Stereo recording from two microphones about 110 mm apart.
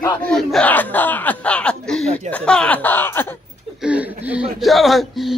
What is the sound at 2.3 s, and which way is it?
Speech, 10° left (ahead or behind).